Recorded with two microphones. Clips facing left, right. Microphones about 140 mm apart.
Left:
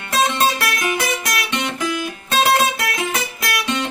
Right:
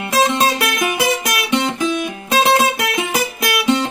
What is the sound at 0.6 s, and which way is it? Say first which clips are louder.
Music: right 3 dB; 20° right (ahead or behind).